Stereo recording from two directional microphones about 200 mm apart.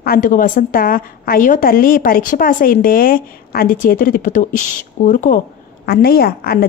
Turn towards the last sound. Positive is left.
turn(degrees=50)  # may be behind; listen again after turning